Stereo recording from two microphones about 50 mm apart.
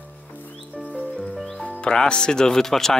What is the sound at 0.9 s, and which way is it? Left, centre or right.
Music, left.